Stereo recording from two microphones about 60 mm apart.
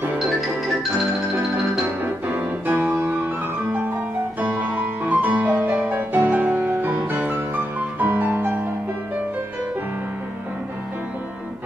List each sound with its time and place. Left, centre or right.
2.0 s piano: right
4.4 s music: right